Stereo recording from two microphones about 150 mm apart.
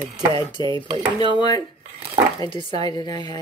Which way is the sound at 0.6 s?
30° right (ahead or behind).